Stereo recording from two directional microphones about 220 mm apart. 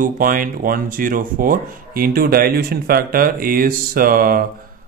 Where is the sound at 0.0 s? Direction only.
40° right (ahead or behind).